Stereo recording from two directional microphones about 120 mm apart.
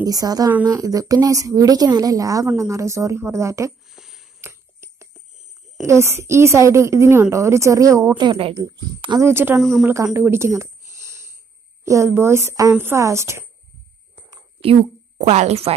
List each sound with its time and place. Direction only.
0.0 s a woman's voice: 30° right (ahead or behind)
3.9 s a sound: 5° right (ahead or behind)
4.4 s a sound: 20° right (ahead or behind)
5.8 s a woman's voice: 25° right (ahead or behind)
8.2 s a woman's voice: 45° right (ahead or behind)
8.5 s a woman's voice: 35° right (ahead or behind)
9.2 s speech: 20° right (ahead or behind)
9.6 s speech: centre (ahead or behind)
10.1 s a sound: 20° right (ahead or behind)
11.8 s a woman's voice: 25° right (ahead or behind)
15.1 s speech: 70° right (ahead or behind)